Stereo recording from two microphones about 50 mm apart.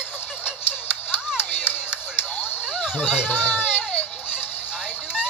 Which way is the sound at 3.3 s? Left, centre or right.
Left.